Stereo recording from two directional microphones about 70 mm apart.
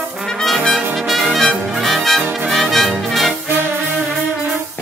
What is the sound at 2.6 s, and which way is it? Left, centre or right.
Brass instrument, centre.